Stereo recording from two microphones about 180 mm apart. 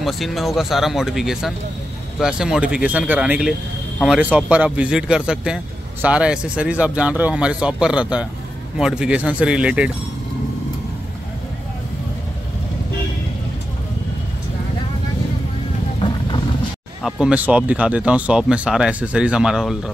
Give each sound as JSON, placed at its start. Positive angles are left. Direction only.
{"t": 0.0, "sound": "speech", "side_deg": 0}
{"t": 17.0, "sound": "speech", "side_deg": -5}